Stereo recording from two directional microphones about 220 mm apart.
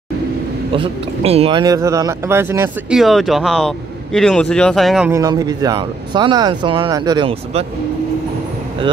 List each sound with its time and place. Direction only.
0.7 s speech: 25° right (ahead or behind); by 3.0 s 10° right (ahead or behind)
3.0 s speech: centre (ahead or behind)
5.1 s speech: 15° right (ahead or behind)